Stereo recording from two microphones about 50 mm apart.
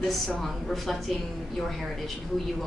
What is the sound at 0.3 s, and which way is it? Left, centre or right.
Speech, centre.